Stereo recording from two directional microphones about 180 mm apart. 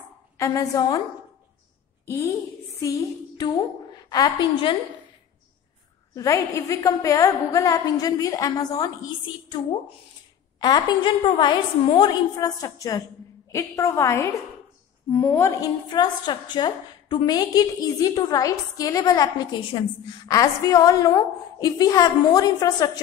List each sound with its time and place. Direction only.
0.4 s a woman's voice: 20° left (ahead or behind)
3.3 s a woman's voice: 20° left (ahead or behind)
6.1 s a woman's voice: 15° left (ahead or behind)
10.6 s a woman's voice: 25° left (ahead or behind)